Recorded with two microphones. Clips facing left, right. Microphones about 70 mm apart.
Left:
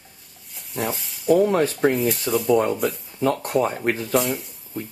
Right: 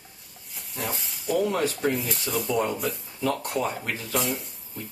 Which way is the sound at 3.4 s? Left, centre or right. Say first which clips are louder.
Left 7 dB; left.